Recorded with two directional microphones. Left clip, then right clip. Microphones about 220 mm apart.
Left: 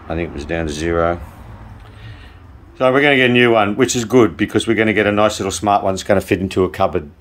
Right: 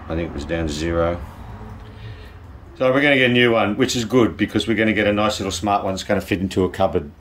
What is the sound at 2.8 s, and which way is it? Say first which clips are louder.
Speech: left 3 dB; 15° left (ahead or behind).